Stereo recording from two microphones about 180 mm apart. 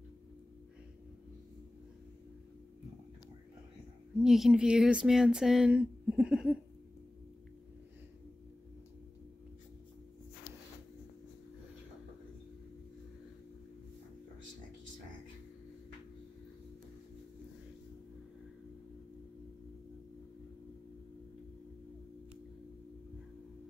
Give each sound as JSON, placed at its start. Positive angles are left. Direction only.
{"t": 4.2, "sound": "speech", "side_deg": 0}